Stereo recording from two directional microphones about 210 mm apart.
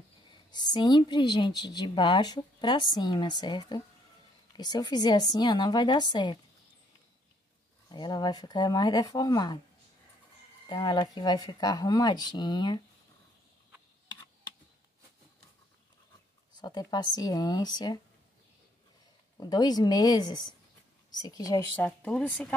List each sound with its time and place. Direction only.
0.3 s speech: 20° left (ahead or behind)
7.9 s speech: 20° left (ahead or behind)
10.7 s speech: 20° left (ahead or behind)
16.5 s speech: 20° left (ahead or behind)
19.3 s speech: 20° left (ahead or behind)